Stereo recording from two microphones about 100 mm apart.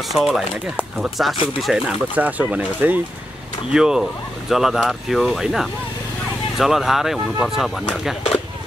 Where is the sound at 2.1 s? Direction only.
15° right (ahead or behind).